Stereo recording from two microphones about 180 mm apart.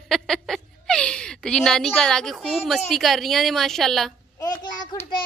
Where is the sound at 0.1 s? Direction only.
Centre (ahead or behind).